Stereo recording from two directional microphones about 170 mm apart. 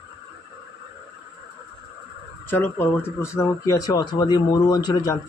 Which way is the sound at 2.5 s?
10° left (ahead or behind).